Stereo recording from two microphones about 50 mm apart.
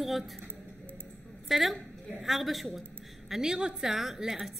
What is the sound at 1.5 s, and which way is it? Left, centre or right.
A woman's voice, centre.